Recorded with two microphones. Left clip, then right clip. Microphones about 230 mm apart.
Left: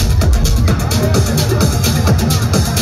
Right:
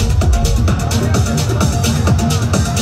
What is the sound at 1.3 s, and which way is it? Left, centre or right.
Music, right.